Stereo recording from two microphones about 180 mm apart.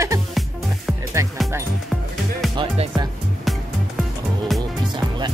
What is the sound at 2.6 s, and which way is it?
Speech, 25° right (ahead or behind).